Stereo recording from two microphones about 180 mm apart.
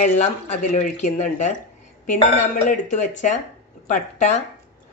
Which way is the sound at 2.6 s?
40° left (ahead or behind).